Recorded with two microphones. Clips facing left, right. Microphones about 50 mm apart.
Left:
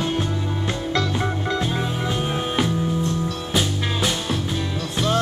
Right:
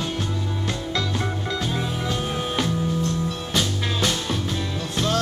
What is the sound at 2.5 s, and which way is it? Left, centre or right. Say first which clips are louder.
Music: left 2 dB; centre.